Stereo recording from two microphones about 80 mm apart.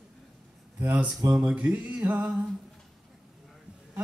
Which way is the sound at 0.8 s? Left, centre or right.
Centre.